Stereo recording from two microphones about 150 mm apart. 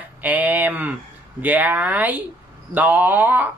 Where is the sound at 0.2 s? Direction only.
10° right (ahead or behind).